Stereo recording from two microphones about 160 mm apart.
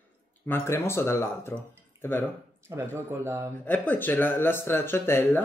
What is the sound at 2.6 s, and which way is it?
Speech, 15° right (ahead or behind).